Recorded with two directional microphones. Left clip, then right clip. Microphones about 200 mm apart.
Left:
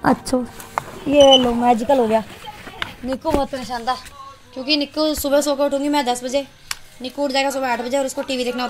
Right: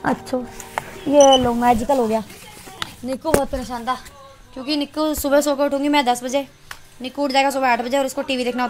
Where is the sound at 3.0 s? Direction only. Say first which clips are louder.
Right 1 dB; 25° right (ahead or behind).